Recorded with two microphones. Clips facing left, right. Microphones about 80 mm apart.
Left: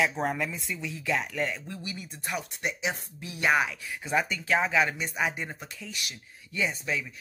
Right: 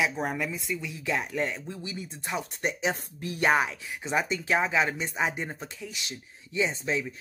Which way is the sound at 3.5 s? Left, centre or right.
Right.